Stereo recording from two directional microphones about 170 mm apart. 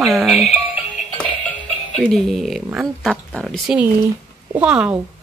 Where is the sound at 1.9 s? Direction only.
5° left (ahead or behind).